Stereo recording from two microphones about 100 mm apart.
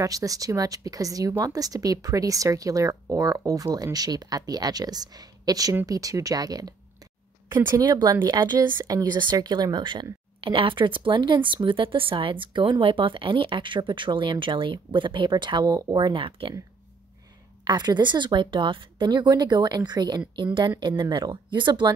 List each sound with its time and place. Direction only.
0.0 s speech: 35° right (ahead or behind)
7.7 s speech: 40° right (ahead or behind)
10.4 s speech: 60° right (ahead or behind)
17.6 s speech: 45° right (ahead or behind)